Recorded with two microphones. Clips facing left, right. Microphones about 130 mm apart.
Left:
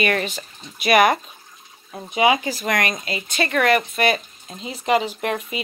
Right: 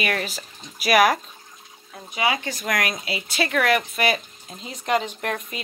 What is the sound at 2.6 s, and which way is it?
Speech, centre (ahead or behind).